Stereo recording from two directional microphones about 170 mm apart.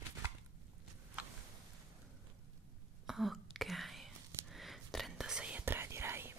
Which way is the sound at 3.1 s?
Centre (ahead or behind).